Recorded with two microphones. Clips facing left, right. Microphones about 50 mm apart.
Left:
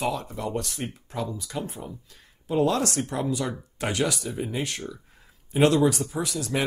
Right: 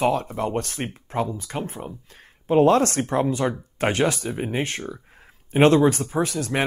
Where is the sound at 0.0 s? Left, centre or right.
Right.